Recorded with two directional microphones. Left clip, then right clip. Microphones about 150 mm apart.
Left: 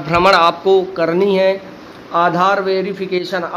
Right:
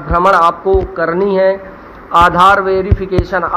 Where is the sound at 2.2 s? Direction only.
Centre (ahead or behind).